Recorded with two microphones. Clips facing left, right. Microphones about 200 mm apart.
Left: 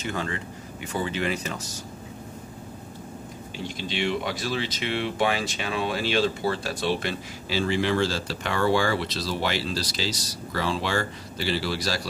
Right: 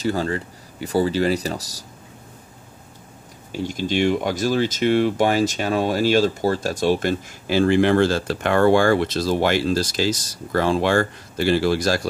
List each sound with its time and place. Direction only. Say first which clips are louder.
0.0 s speech: right 8 dB; 35° right (ahead or behind)
3.5 s speech: right 9 dB; 45° right (ahead or behind)